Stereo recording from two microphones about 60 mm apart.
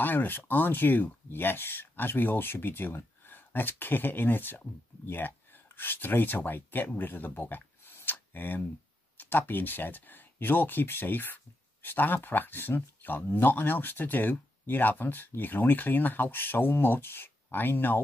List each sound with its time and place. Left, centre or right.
0.0 s speech: left